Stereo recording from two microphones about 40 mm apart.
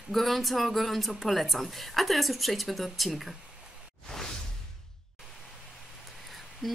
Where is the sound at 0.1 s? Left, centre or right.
Centre.